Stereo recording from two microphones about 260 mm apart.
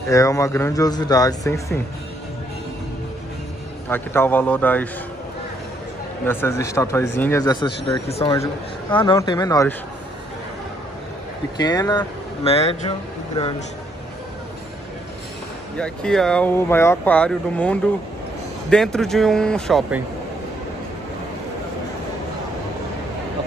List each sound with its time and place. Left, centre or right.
0.1 s speech: centre
3.9 s speech: centre
6.2 s speech: centre
11.6 s speech: centre
15.8 s speech: centre